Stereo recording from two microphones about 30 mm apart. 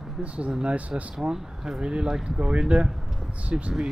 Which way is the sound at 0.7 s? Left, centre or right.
Right.